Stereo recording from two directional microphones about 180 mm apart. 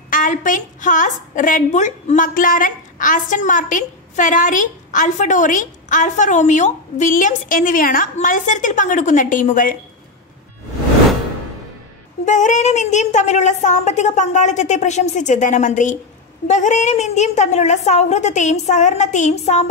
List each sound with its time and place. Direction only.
0.1 s a woman's voice: 45° left (ahead or behind)
12.3 s a woman's voice: 45° left (ahead or behind)